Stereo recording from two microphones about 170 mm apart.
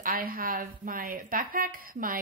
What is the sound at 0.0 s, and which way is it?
Speech, 60° right (ahead or behind).